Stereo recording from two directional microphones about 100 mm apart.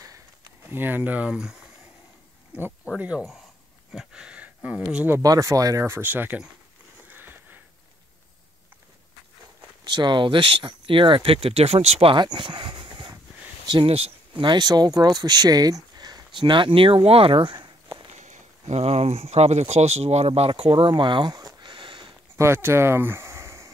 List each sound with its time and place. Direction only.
0.0 s a sound: 35° right (ahead or behind)
0.7 s speech: 20° right (ahead or behind)
3.0 s speech: 10° right (ahead or behind)
5.2 s speech: 35° right (ahead or behind); by 6.4 s 20° right (ahead or behind)
7.1 s a sound: 20° right (ahead or behind)
9.8 s speech: 50° right (ahead or behind); by 12.2 s 80° right
12.2 s speech: 50° right (ahead or behind)
13.9 s a sound: 90° right
14.4 s speech: 45° right (ahead or behind)
16.3 s speech: 55° right (ahead or behind)
18.8 s speech: 90° right; by 22.1 s 55° right (ahead or behind)
22.4 s speech: 25° right (ahead or behind)